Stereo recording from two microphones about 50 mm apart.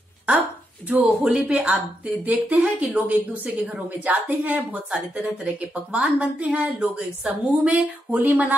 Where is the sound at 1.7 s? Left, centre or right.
Right.